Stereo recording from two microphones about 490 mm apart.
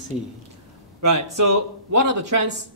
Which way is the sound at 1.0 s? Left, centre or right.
Right.